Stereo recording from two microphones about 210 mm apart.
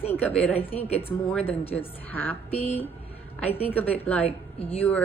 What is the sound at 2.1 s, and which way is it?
Speech, 10° left (ahead or behind).